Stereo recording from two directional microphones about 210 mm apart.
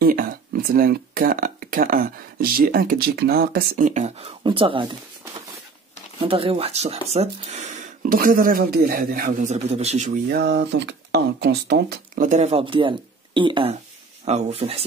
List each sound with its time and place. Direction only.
0.0 s speech: 40° right (ahead or behind); by 4.9 s 25° right (ahead or behind)
6.2 s speech: 25° right (ahead or behind)
10.3 s speech: 55° right (ahead or behind)
12.3 s speech: 30° right (ahead or behind)